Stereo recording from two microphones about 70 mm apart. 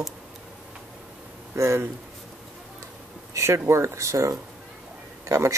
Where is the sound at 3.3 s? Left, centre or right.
Right.